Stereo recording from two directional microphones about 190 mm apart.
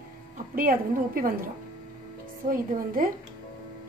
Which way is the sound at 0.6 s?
50° right (ahead or behind).